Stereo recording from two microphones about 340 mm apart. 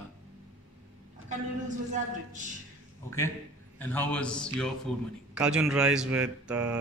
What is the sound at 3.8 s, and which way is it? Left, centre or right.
Speech, centre.